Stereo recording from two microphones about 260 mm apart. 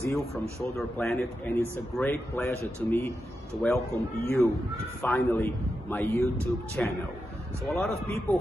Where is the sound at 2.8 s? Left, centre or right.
Centre.